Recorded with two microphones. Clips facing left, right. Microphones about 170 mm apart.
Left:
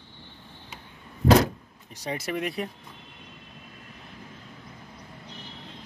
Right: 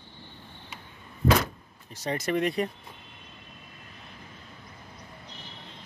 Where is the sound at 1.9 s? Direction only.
10° left (ahead or behind).